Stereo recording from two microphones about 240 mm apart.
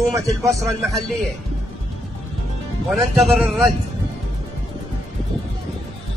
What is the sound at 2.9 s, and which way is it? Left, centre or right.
Speech, centre.